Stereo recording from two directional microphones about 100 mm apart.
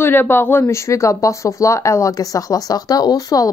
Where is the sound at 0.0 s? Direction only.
20° left (ahead or behind).